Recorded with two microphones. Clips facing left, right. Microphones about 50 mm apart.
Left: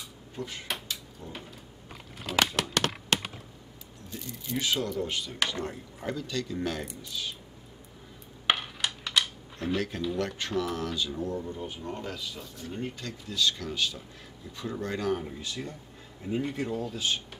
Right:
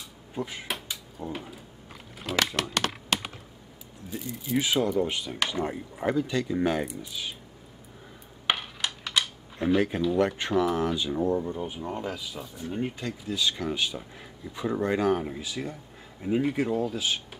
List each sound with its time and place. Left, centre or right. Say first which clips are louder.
0.3 s speech: right 3 dB; centre
0.8 s a sound: right 4 dB; centre
4.1 s speech: right 6 dB; centre
8.5 s typing: even; centre
9.8 s speech: right 7 dB; centre
11.5 s speech: right 4 dB; centre
15.4 s speech: right 3 dB; centre